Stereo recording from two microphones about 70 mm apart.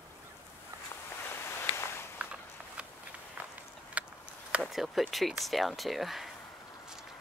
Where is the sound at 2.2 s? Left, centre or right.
Centre.